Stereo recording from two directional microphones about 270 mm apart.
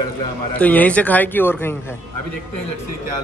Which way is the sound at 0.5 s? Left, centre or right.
Centre.